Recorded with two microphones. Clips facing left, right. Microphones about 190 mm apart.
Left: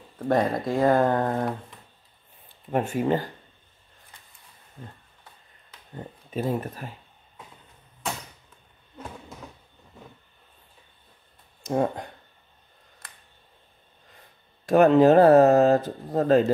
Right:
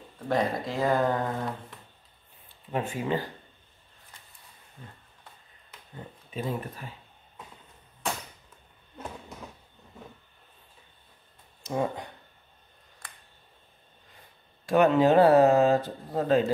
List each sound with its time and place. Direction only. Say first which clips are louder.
0.3 s speech: left 4 dB; 50° left (ahead or behind)
2.7 s speech: left 5 dB; 50° left (ahead or behind)
6.3 s speech: left 5 dB; 45° left (ahead or behind)
11.6 s speech: left 5 dB; 50° left (ahead or behind)
14.7 s speech: left 5 dB; 45° left (ahead or behind)